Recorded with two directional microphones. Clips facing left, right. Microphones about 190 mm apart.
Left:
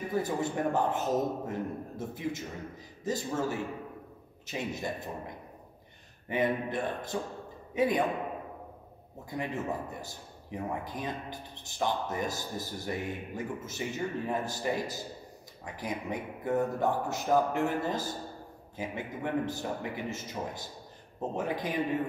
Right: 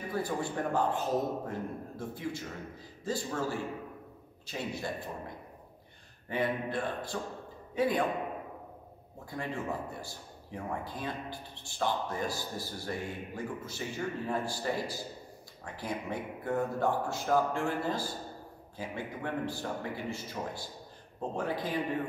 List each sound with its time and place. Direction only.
0.1 s a man's voice: 20° left (ahead or behind)
6.2 s a man's voice: 20° left (ahead or behind)
9.3 s a man's voice: 15° left (ahead or behind)